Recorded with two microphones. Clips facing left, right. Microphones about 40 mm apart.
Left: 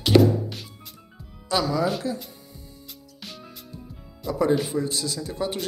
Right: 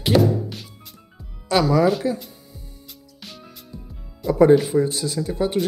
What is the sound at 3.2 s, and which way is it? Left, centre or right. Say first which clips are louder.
Music: even; centre.